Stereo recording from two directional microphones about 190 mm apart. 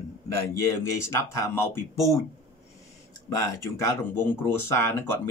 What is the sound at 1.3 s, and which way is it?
Speech, 15° left (ahead or behind).